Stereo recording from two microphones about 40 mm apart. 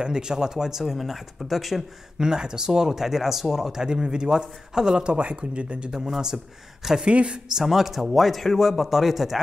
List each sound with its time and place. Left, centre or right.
0.0 s speech: centre
2.1 s speech: centre
5.9 s speech: centre
7.1 s speech: right
7.5 s speech: centre